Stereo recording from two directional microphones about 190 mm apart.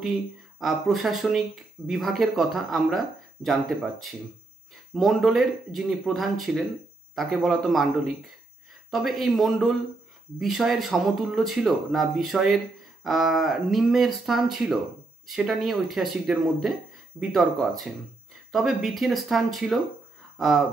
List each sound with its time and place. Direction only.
0.0 s speech: centre (ahead or behind)